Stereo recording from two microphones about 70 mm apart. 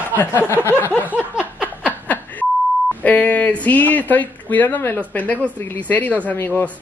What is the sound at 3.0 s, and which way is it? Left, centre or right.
Speech, left.